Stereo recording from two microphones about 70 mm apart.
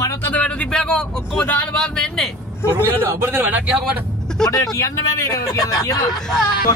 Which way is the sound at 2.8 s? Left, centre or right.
Right.